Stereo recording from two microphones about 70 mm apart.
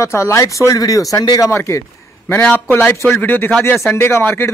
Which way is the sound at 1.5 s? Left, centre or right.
Left.